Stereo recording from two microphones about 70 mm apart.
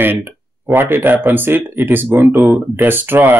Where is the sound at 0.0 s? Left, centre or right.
Right.